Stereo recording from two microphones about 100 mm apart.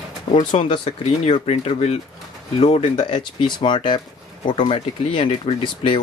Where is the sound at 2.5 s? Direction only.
65° left (ahead or behind).